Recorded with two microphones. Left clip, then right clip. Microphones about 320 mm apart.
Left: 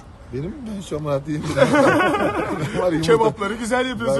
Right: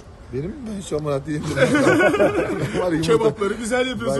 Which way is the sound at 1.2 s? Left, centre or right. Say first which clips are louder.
Left 1 dB; left.